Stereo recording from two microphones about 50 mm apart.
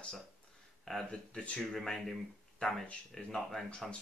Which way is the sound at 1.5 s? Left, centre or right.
Centre.